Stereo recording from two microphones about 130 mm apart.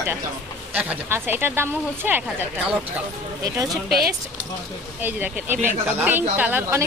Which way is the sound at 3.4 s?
25° right (ahead or behind).